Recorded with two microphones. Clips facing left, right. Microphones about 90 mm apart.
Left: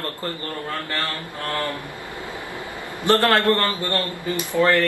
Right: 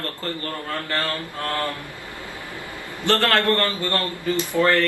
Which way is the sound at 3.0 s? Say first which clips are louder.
Left 2 dB; 20° left (ahead or behind).